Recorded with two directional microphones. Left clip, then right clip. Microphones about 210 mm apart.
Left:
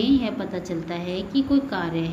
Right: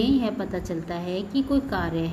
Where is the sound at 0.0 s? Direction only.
25° right (ahead or behind).